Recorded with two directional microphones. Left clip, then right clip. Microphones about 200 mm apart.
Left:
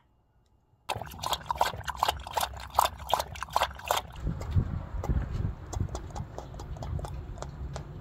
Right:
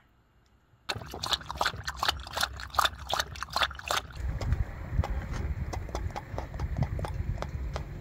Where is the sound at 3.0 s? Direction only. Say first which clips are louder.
Left 2 dB; 15° right (ahead or behind).